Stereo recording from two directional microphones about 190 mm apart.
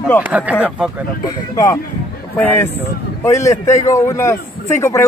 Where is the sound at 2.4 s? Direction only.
10° left (ahead or behind).